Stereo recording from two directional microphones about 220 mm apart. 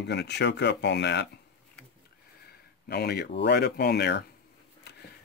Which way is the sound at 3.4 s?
45° left (ahead or behind).